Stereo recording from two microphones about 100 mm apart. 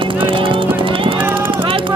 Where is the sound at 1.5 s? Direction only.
60° right (ahead or behind).